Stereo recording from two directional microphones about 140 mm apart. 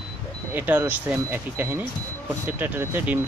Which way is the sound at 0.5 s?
15° right (ahead or behind).